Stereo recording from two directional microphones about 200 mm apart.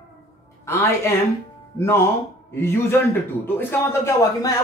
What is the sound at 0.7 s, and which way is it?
A man's voice, 15° left (ahead or behind).